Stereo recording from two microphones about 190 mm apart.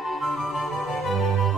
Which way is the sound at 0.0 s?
Centre (ahead or behind).